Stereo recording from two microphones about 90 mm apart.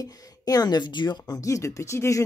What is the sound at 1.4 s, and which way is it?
Speech, 35° left (ahead or behind).